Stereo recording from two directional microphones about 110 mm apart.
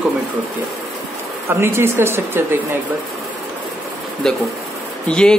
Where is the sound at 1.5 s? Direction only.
20° right (ahead or behind).